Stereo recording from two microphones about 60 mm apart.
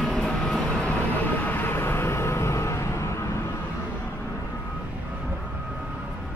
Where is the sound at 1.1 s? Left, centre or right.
Left.